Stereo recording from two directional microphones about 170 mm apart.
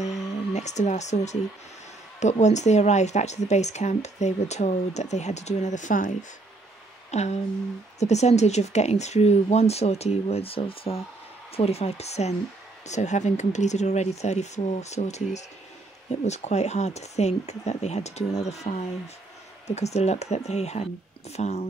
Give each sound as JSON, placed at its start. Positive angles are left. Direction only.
{"t": 0.0, "sound": "music", "side_deg": 40}
{"t": 2.1, "sound": "speech", "side_deg": 40}
{"t": 7.1, "sound": "a sound", "side_deg": 40}
{"t": 8.0, "sound": "speech", "side_deg": 40}